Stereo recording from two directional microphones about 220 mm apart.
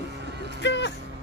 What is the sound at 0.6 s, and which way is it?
Speech, 55° left (ahead or behind).